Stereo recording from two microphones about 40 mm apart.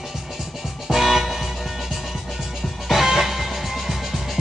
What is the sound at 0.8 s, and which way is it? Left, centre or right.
Music, centre.